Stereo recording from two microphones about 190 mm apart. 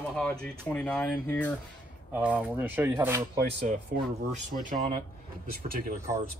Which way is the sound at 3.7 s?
45° right (ahead or behind).